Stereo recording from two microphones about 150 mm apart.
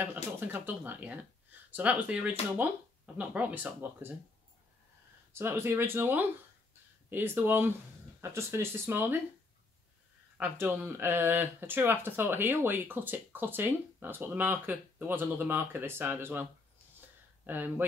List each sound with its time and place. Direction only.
0.0 s speech: 15° right (ahead or behind)
5.3 s speech: 15° right (ahead or behind)
10.3 s speech: 15° right (ahead or behind)
17.5 s speech: 10° right (ahead or behind)